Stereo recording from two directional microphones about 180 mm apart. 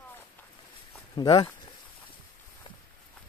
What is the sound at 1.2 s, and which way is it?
Speech, 25° left (ahead or behind).